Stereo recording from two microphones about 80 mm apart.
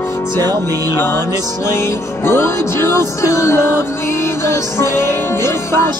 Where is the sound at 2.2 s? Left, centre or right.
Left.